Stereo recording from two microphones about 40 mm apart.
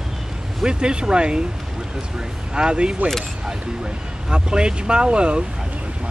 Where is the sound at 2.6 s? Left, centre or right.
Right.